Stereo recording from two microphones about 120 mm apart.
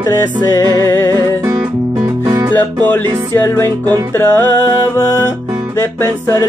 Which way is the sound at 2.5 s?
20° left (ahead or behind).